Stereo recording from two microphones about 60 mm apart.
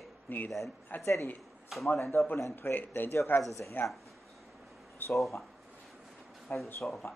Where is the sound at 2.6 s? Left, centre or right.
Left.